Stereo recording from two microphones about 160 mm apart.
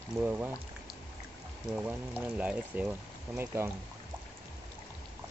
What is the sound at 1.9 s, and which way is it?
Speech, 10° right (ahead or behind).